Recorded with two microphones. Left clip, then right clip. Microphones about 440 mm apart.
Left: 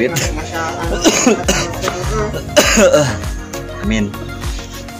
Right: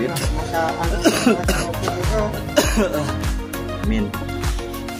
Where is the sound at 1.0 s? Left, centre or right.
Right.